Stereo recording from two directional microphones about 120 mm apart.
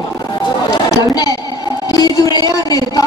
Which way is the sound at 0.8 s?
30° left (ahead or behind).